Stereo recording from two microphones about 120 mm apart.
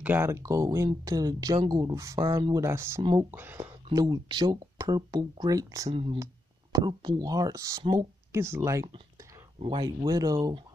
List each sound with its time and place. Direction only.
0.0 s speech: 15° right (ahead or behind)
0.4 s speech: 25° right (ahead or behind)
2.1 s speech: 45° right (ahead or behind)
2.5 s speech: 25° right (ahead or behind)
3.9 s speech: 35° right (ahead or behind)
9.6 s speech: 45° right (ahead or behind)
10.0 s speech: 30° right (ahead or behind)